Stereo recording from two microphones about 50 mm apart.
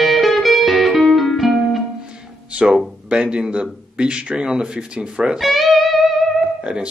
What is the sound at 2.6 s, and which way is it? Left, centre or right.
Speech, centre.